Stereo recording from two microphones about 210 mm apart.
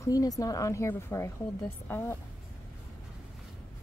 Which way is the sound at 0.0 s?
15° left (ahead or behind).